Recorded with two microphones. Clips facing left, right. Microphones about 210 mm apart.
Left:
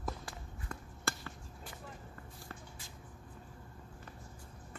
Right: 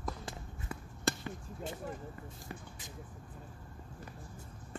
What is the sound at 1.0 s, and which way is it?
Basketball bounce, 20° right (ahead or behind).